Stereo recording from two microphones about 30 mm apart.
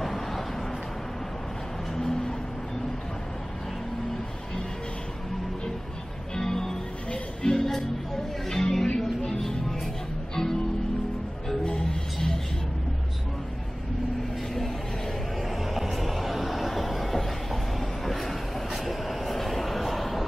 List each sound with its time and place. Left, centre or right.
0.0 s vehicle: centre
2.0 s vehicle: centre
6.3 s music: centre
11.6 s music: left
15.5 s a sound: centre